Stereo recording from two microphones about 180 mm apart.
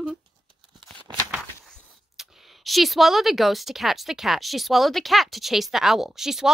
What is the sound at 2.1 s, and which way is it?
Speech, centre (ahead or behind).